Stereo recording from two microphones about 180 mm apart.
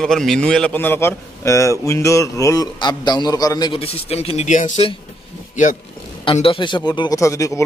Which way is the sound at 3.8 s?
35° left (ahead or behind).